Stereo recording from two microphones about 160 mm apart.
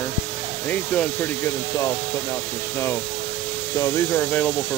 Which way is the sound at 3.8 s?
15° left (ahead or behind).